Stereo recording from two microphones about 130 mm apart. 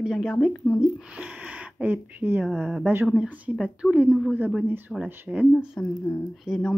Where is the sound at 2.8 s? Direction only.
15° right (ahead or behind).